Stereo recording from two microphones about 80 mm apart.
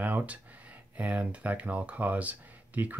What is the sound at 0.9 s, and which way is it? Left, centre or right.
Speech, centre.